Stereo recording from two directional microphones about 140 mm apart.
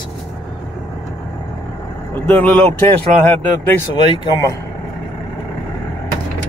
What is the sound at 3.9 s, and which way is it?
Speech, 35° left (ahead or behind).